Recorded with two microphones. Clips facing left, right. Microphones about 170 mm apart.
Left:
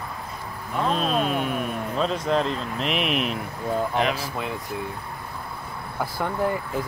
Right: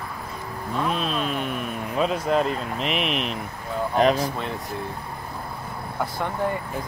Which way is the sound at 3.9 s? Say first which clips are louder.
Right 9 dB; 40° right (ahead or behind).